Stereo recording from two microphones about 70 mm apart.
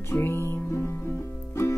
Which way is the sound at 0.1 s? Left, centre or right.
Left.